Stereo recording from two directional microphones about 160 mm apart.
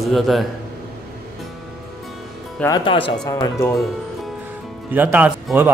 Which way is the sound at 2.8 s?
30° left (ahead or behind).